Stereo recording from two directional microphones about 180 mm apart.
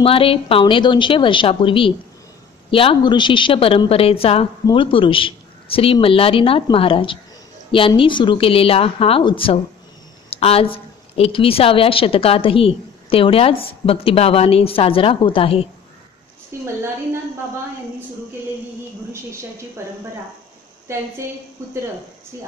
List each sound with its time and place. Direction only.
0.0 s a woman's voice: 30° left (ahead or behind)
16.5 s a woman's voice: 15° right (ahead or behind)